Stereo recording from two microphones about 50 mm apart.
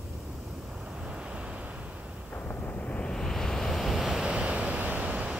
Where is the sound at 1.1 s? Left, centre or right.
Centre.